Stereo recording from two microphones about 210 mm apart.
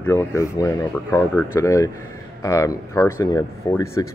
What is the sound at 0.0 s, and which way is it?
Speech, 10° left (ahead or behind).